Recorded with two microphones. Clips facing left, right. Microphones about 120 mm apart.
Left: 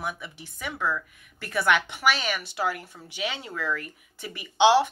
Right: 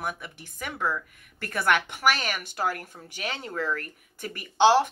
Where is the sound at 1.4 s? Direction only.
50° right (ahead or behind).